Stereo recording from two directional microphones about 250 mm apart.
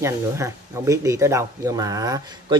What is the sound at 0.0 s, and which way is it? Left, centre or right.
Speech, centre.